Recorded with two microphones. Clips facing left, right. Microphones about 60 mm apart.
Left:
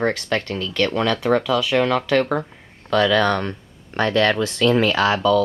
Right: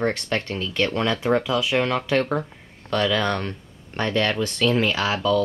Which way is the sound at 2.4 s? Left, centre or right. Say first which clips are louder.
Left 2 dB; centre.